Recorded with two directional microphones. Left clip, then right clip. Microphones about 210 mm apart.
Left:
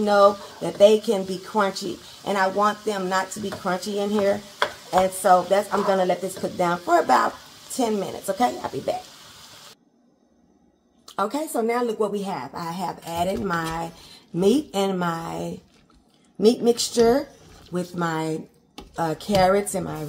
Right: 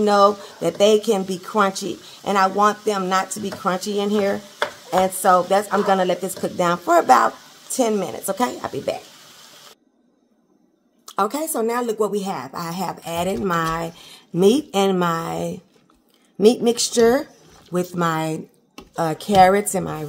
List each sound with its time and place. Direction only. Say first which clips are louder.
0.0 s speech: right 2 dB; 40° right (ahead or behind)
11.1 s speech: right 4 dB; 35° right (ahead or behind)